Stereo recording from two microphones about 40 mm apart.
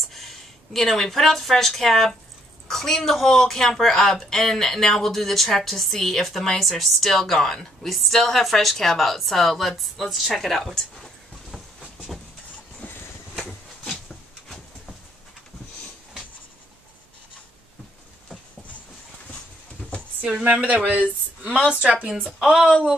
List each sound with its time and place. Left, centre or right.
0.0 s a woman's voice: centre
12.8 s a sound: left
13.4 s a sound: centre
20.6 s speech: right
21.5 s speech: right
22.4 s a woman's voice: centre